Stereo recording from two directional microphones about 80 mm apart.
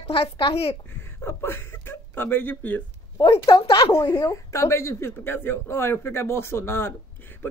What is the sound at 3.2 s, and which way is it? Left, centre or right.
Speech, left.